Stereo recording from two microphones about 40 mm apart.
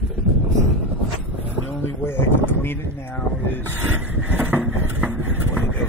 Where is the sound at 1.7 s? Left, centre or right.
Left.